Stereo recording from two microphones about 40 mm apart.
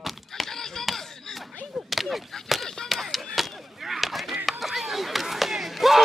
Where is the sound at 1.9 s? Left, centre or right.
Centre.